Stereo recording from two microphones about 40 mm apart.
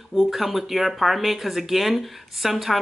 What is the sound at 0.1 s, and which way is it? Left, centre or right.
Speech, centre.